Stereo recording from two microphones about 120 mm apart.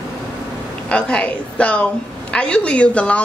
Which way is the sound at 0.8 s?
10° left (ahead or behind).